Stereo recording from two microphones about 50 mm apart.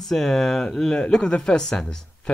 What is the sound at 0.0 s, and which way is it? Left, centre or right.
Speech, centre.